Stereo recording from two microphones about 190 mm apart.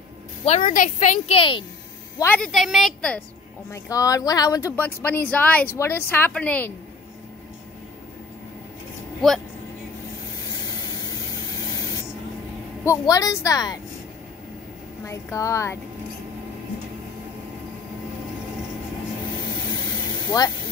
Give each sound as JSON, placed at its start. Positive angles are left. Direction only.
{"t": 0.5, "sound": "a woman's voice", "side_deg": 40}
{"t": 2.1, "sound": "a woman's voice", "side_deg": 10}
{"t": 3.7, "sound": "speech", "side_deg": 15}
{"t": 9.2, "sound": "a woman's voice", "side_deg": 0}
{"t": 12.8, "sound": "a woman's voice", "side_deg": 20}
{"t": 15.0, "sound": "speech", "side_deg": 15}
{"t": 19.8, "sound": "a sound", "side_deg": 20}